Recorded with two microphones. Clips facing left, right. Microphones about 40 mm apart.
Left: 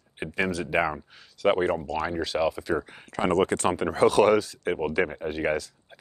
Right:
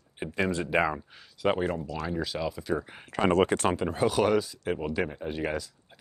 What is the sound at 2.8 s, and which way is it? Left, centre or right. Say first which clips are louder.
Speech: right 1 dB; centre.